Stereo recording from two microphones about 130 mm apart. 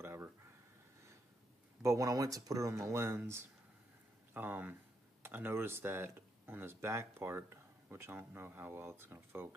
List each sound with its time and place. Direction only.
0.0 s a sound: 15° right (ahead or behind)
1.8 s speech: 25° right (ahead or behind)
4.3 s speech: 15° right (ahead or behind)